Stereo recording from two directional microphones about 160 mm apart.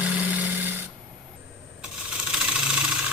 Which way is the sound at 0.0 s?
10° right (ahead or behind).